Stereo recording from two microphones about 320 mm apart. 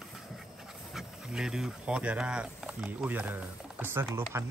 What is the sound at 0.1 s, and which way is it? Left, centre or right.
Speech, centre.